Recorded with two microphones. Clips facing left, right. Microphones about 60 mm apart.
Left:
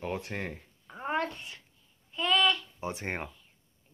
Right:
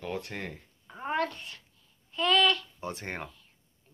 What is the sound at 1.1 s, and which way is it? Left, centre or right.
Speech, centre.